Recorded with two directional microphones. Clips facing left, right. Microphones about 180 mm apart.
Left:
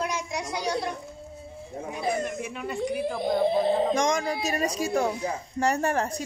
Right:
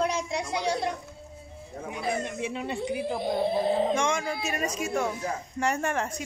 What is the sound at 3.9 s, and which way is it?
Speech, 40° left (ahead or behind).